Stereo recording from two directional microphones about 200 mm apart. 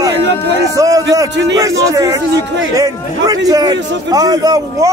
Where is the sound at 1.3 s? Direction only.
60° right (ahead or behind).